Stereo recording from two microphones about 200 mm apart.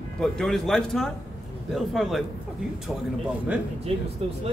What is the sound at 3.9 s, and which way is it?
Speech, 30° right (ahead or behind).